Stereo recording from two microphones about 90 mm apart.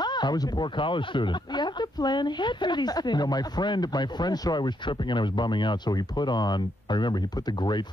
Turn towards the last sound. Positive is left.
turn(degrees=55)  # may be behind; listen again after turning